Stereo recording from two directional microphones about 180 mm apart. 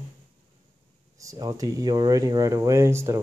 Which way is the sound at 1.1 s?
20° right (ahead or behind).